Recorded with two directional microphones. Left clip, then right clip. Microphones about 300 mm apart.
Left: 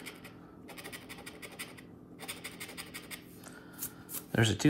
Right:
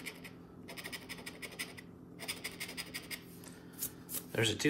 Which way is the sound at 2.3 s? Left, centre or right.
Left.